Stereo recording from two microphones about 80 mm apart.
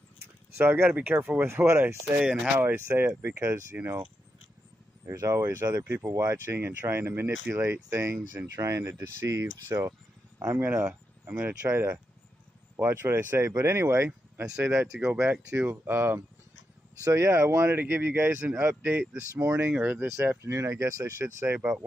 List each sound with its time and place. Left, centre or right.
0.6 s speech: right
3.7 s speech: right
5.0 s speech: right
10.9 s a sound: right
11.7 s speech: right
19.3 s speech: right
19.6 s speech: right
20.2 s speech: right
21.5 s speech: centre